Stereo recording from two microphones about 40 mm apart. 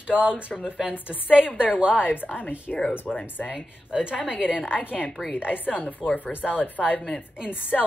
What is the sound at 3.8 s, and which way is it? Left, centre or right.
Speech, right.